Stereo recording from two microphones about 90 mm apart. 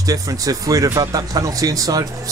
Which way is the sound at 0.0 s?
40° right (ahead or behind).